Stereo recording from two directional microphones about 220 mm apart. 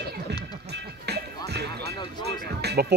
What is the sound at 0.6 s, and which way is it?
Music, 50° right (ahead or behind).